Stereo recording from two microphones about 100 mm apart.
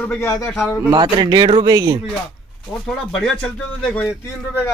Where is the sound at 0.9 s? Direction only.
50° right (ahead or behind).